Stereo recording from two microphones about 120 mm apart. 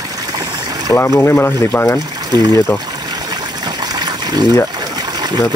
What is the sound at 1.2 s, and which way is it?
Speech, 20° left (ahead or behind).